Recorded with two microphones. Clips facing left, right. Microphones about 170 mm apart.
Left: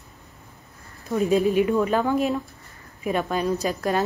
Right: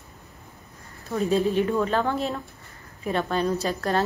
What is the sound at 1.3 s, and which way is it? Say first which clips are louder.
Speech: left 2 dB; 15° left (ahead or behind).